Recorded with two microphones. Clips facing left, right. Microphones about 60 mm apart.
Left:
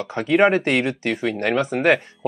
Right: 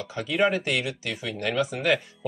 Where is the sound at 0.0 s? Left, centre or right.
Left.